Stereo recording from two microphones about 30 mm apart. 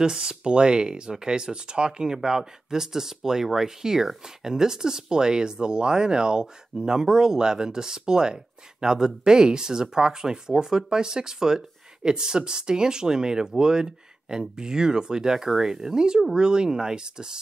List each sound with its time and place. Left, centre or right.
0.0 s speech: right